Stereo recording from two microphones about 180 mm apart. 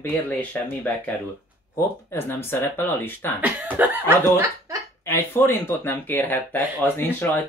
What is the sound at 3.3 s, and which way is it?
Speech, 10° right (ahead or behind).